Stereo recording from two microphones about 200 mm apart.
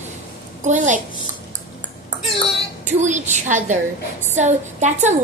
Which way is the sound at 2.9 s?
35° right (ahead or behind).